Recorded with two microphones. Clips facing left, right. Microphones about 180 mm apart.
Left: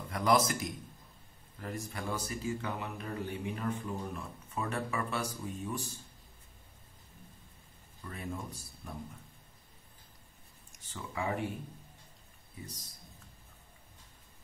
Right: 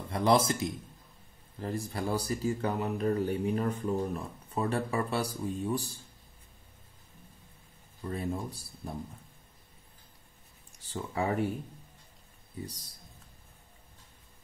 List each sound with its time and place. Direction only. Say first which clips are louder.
0.1 s a man's voice: right 3 dB; 30° right (ahead or behind)
8.0 s speech: right 7 dB; 35° right (ahead or behind)
10.8 s speech: right 6 dB; 35° right (ahead or behind)